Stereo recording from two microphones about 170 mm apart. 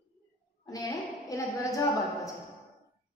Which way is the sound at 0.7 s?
20° left (ahead or behind).